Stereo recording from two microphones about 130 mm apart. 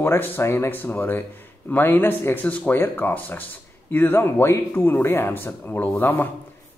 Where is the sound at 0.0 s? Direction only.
20° left (ahead or behind).